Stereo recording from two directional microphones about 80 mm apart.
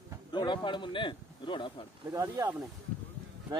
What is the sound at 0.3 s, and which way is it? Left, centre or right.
A man's voice, left.